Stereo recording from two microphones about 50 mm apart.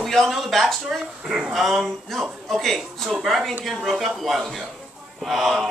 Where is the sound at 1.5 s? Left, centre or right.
Centre.